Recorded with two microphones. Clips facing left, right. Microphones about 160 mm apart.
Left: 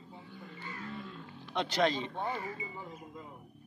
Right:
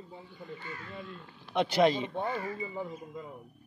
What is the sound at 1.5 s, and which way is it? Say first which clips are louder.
Speech: right 5 dB; 10° right (ahead or behind).